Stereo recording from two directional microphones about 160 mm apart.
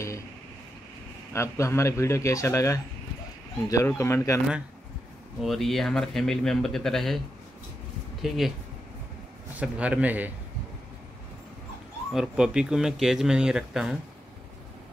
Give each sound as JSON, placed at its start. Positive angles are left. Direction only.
{"t": 1.3, "sound": "speech", "side_deg": 15}
{"t": 5.4, "sound": "speech", "side_deg": 0}
{"t": 8.2, "sound": "speech", "side_deg": 0}
{"t": 9.6, "sound": "a man's voice", "side_deg": -10}
{"t": 12.1, "sound": "speech", "side_deg": -5}